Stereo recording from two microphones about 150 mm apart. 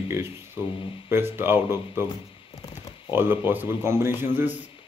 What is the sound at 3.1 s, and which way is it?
Speech, 15° right (ahead or behind).